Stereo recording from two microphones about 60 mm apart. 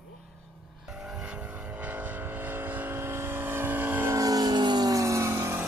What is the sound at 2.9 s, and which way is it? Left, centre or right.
Vehicle, right.